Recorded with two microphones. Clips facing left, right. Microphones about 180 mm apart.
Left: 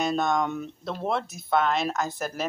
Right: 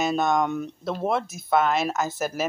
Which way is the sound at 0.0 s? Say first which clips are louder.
Right 2 dB; 5° right (ahead or behind).